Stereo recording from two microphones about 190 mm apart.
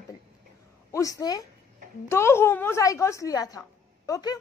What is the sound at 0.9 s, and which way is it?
A woman's voice, 15° left (ahead or behind).